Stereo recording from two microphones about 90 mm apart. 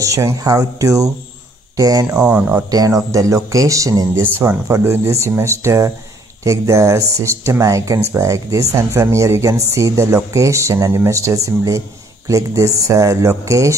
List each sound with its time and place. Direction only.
0.0 s speech: 35° right (ahead or behind)
2.2 s speech: 15° right (ahead or behind)
2.7 s speech: 40° right (ahead or behind)
4.1 s speech: 25° right (ahead or behind)